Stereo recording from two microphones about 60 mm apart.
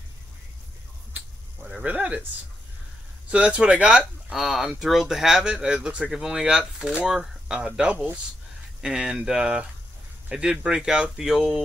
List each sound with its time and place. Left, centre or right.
1.9 s speech: right
3.3 s speech: centre
4.3 s speech: centre